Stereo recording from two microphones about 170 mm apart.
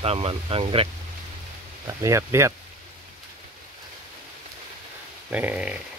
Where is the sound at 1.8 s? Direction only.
20° right (ahead or behind).